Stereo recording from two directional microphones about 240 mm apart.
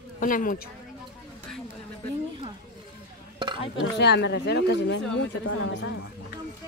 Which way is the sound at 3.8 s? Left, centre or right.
Left.